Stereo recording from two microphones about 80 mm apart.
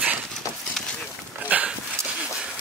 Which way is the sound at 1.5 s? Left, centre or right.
Centre.